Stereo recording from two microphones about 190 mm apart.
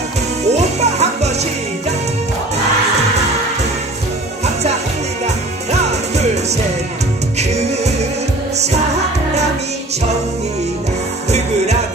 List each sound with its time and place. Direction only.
0.5 s music: 35° right (ahead or behind)
5.2 s music: 35° right (ahead or behind)
7.3 s music: 35° right (ahead or behind)
11.3 s music: 35° right (ahead or behind)